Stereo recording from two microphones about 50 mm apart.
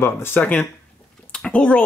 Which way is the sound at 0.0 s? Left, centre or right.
Left.